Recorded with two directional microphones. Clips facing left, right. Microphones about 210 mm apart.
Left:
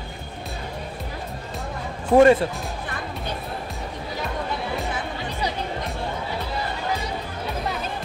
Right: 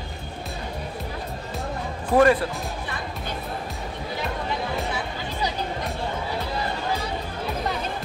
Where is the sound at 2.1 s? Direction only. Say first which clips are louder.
Left 4 dB; 25° left (ahead or behind).